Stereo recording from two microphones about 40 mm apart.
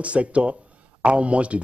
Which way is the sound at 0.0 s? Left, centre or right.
Right.